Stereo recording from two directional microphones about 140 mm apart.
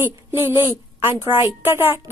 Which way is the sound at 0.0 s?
15° right (ahead or behind).